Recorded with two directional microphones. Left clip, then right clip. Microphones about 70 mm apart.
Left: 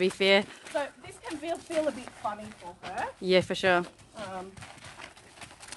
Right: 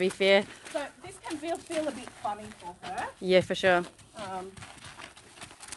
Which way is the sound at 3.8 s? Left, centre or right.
Right.